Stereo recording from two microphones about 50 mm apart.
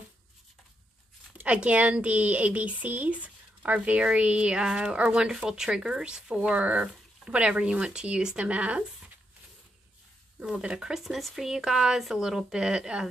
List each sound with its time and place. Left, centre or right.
1.4 s a woman's voice: right
5.2 s a woman's voice: centre
10.4 s speech: right